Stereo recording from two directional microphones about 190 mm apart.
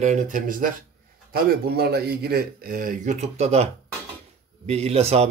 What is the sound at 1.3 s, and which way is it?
Speech, 55° right (ahead or behind).